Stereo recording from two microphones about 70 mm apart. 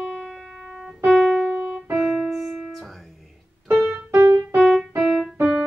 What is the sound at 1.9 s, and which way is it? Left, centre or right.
Piano, centre.